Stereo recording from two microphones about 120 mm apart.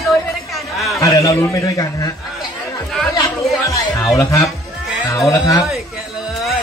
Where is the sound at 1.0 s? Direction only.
25° left (ahead or behind).